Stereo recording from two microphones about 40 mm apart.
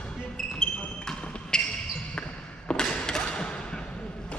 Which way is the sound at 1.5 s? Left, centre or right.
Centre.